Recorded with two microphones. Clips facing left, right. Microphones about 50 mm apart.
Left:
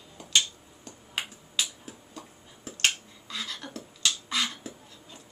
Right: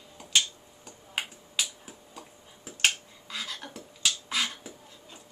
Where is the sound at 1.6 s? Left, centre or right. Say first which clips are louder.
Left 1 dB; centre.